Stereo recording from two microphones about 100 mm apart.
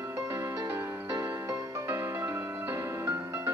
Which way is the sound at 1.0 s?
35° right (ahead or behind).